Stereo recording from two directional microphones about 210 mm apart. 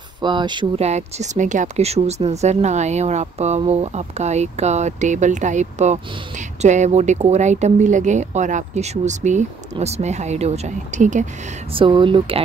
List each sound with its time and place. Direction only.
0.2 s speech: 20° right (ahead or behind)
11.7 s speech: 25° right (ahead or behind)